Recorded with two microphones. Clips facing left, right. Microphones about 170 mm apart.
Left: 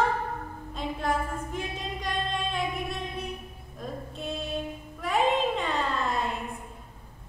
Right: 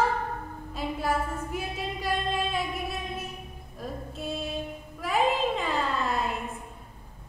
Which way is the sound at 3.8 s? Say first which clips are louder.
Even; 5° right (ahead or behind).